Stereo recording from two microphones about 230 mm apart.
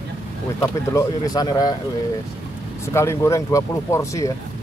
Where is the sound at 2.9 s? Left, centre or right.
Centre.